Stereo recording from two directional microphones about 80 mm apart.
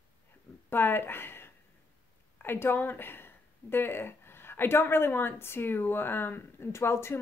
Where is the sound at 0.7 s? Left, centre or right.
Left.